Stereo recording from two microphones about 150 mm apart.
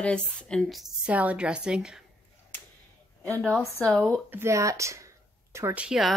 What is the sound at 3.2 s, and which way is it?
Speech, 10° left (ahead or behind).